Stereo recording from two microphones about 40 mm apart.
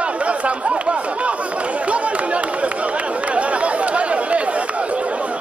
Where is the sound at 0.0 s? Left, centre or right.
Right.